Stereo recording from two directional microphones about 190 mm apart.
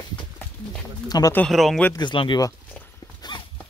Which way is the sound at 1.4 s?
Centre (ahead or behind).